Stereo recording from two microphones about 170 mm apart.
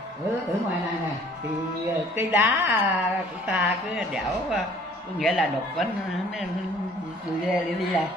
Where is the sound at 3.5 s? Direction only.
5° right (ahead or behind).